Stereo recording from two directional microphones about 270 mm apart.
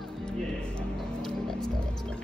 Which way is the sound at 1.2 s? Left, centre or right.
Centre.